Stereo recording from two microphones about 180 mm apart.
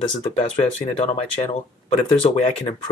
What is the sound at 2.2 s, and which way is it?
Speech, 35° left (ahead or behind).